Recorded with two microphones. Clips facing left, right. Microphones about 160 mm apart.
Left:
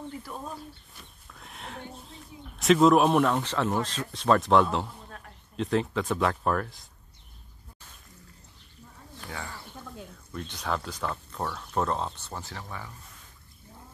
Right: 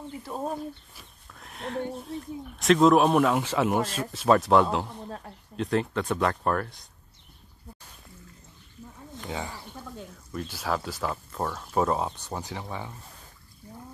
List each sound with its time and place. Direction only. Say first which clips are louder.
0.3 s speech: right 10 dB; 30° right (ahead or behind)
0.9 s horse: even; centre (ahead or behind)
2.6 s speech: right 1 dB; centre (ahead or behind)
9.1 s speech: right 5 dB; 20° right (ahead or behind)
9.9 s speech: right 3 dB; 5° right (ahead or behind); by 12.9 s 20° right (ahead or behind)